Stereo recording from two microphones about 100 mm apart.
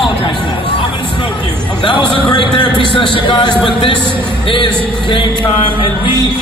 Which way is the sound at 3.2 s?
55° left (ahead or behind).